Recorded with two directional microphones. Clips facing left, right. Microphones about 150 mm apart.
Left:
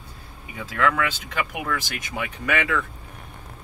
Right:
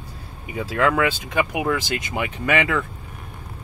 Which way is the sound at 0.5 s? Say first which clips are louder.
Right 3 dB; 20° right (ahead or behind).